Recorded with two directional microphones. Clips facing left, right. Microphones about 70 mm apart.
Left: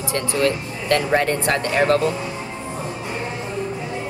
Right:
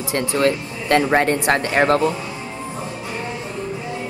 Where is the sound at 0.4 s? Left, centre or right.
Right.